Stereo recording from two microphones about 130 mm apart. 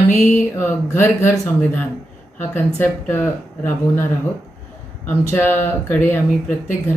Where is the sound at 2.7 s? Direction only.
20° left (ahead or behind).